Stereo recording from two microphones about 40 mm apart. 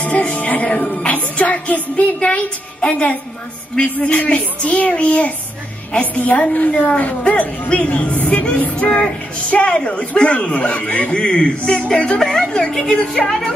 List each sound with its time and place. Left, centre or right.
0.4 s speech: left
0.7 s music: left
2.9 s a woman's voice: left
3.7 s music: left
11.1 s music: left
12.3 s a woman's voice: centre